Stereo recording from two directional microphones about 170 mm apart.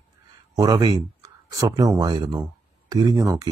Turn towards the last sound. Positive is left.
turn(degrees=-20)  # may be behind; listen again after turning